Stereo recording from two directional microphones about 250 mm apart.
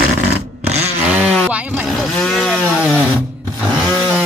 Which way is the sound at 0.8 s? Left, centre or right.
Centre.